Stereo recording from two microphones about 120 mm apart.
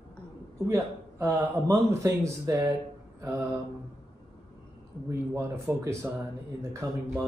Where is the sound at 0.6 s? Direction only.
25° right (ahead or behind).